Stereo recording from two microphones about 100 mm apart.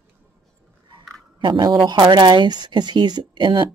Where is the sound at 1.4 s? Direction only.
50° right (ahead or behind).